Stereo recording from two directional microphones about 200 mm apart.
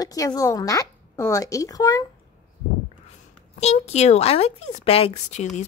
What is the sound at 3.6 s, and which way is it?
A woman's voice, 30° left (ahead or behind).